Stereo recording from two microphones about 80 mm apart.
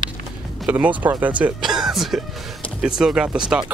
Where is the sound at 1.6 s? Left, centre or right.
Centre.